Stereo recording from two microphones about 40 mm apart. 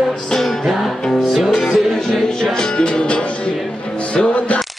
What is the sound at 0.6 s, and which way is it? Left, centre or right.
Music, centre.